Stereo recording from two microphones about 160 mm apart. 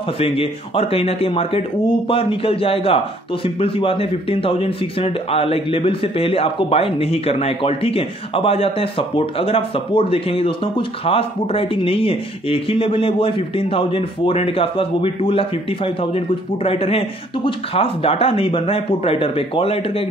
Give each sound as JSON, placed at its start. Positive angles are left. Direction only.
{"t": 0.2, "sound": "a man's voice", "side_deg": 40}